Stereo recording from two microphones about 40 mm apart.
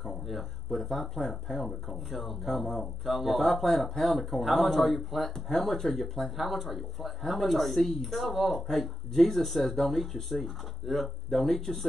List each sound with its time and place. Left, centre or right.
0.0 s speech: centre